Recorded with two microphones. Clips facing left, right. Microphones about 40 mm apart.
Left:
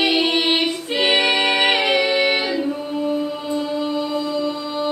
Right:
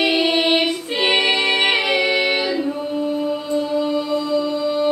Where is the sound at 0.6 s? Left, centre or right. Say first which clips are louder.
Even; centre.